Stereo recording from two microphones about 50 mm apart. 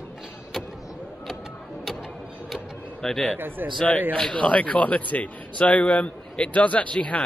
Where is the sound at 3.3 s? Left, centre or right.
Right.